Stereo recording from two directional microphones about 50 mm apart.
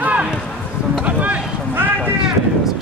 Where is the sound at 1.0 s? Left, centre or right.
Right.